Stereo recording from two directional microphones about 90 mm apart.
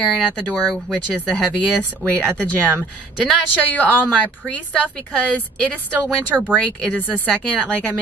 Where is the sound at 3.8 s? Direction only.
15° left (ahead or behind).